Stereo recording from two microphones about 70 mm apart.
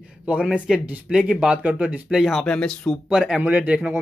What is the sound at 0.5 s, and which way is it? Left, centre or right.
Speech, centre.